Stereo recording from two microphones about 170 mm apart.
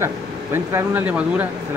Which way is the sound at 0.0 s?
15° right (ahead or behind).